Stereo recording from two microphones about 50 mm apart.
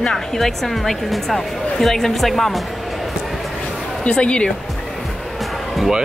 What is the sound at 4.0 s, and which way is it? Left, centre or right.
Speech, left.